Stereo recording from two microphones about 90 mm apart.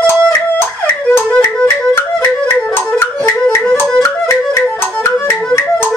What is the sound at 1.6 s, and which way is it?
Music, 25° left (ahead or behind).